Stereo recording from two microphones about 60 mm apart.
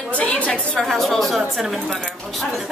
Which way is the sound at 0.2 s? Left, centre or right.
Left.